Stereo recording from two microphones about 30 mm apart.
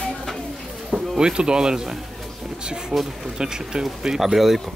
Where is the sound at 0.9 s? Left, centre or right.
Right.